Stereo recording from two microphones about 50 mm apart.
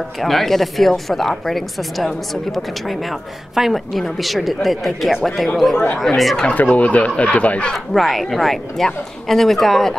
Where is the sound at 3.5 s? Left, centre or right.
Centre.